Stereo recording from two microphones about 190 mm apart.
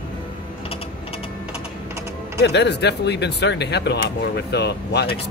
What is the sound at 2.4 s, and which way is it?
Speech, 65° left (ahead or behind).